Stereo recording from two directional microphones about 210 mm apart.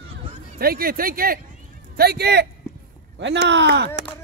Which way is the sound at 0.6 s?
45° right (ahead or behind).